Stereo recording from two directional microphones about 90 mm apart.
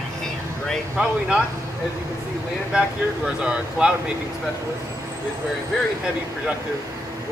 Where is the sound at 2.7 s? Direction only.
10° right (ahead or behind).